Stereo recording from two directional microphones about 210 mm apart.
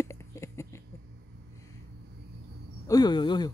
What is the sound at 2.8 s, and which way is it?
Speech, 20° left (ahead or behind).